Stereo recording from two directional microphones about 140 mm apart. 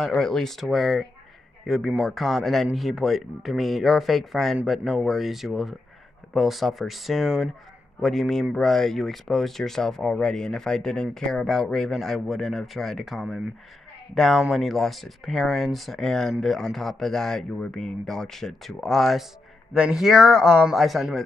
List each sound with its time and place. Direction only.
0.0 s speech: 5° left (ahead or behind)